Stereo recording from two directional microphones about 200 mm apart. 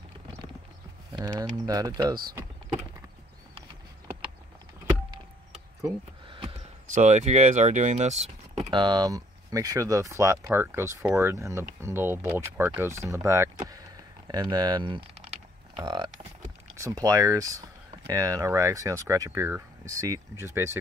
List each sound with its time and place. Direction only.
1.1 s speech: 20° right (ahead or behind)
6.9 s speech: 35° right (ahead or behind)
8.6 s speech: 20° right (ahead or behind)